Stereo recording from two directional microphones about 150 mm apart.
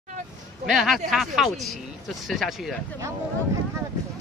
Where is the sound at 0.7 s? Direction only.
Centre (ahead or behind).